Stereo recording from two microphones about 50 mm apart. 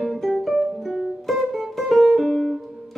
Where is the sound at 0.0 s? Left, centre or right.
Centre.